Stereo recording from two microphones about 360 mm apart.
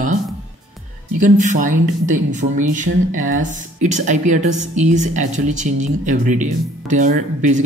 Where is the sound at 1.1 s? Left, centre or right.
Right.